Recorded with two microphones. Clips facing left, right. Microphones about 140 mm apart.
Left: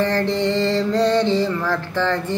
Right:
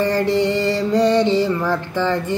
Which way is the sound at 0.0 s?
10° right (ahead or behind).